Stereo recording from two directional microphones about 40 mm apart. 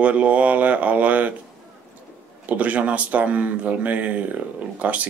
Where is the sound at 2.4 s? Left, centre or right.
Right.